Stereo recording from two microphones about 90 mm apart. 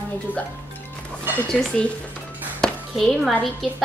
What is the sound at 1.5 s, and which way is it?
Speech, 10° left (ahead or behind).